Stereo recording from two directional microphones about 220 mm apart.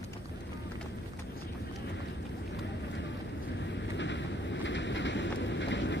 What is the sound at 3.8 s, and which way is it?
Vehicle, 55° left (ahead or behind).